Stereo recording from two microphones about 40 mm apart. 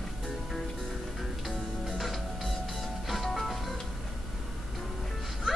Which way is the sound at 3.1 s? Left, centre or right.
Centre.